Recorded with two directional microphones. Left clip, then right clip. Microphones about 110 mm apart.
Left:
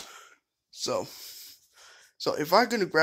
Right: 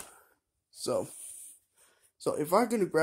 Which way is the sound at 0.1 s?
5° right (ahead or behind).